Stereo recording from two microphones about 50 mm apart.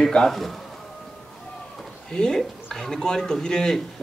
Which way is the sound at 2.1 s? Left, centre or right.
Centre.